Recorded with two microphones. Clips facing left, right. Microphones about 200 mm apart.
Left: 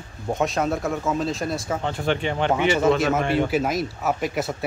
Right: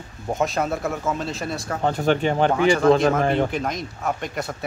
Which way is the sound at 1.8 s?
45° right (ahead or behind).